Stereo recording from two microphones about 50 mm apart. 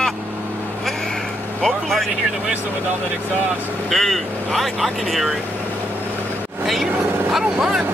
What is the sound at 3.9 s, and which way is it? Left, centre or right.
Speech, centre.